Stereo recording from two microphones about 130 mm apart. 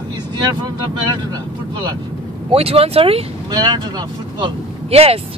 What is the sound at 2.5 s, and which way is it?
Speech, 50° right (ahead or behind).